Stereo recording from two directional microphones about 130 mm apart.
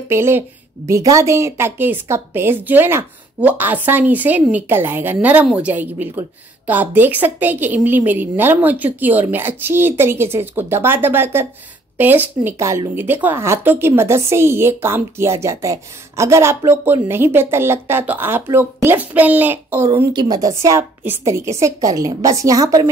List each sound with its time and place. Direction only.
0.1 s a woman's voice: 20° right (ahead or behind)
20.1 s a woman's voice: 30° right (ahead or behind)